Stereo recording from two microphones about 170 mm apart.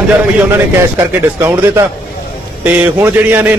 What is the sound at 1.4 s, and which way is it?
A man's voice, 15° right (ahead or behind).